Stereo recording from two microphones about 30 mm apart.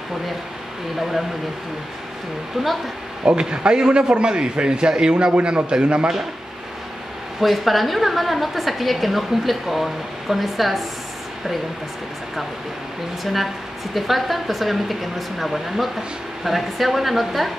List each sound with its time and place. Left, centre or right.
3.3 s a man's voice: right
7.3 s a woman's voice: centre
13.2 s a woman's voice: centre